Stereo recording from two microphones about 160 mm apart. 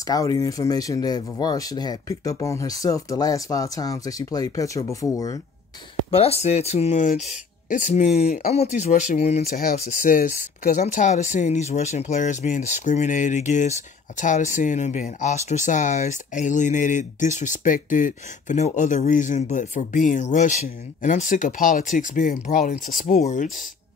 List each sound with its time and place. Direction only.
0.0 s speech: 25° left (ahead or behind)
6.1 s speech: 40° left (ahead or behind)
9.4 s speech: 65° left (ahead or behind); by 23.5 s 50° left (ahead or behind)